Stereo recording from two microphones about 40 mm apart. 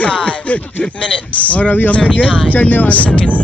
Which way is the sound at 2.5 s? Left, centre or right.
Left.